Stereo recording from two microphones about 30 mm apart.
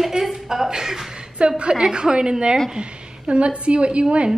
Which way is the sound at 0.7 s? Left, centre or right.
Centre.